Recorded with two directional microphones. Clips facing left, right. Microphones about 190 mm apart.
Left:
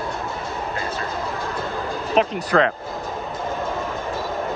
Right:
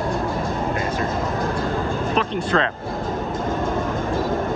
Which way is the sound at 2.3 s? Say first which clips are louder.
Even; 25° right (ahead or behind).